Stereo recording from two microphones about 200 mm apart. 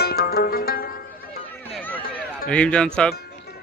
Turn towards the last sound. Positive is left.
turn(degrees=5)  # may be behind; listen again after turning